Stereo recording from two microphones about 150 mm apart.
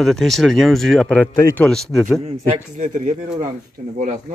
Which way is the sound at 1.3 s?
20° left (ahead or behind).